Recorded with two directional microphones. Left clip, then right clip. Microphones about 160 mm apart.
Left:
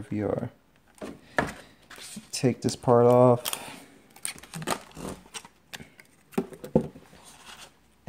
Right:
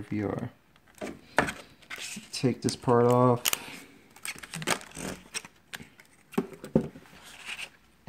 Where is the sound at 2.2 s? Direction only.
25° left (ahead or behind).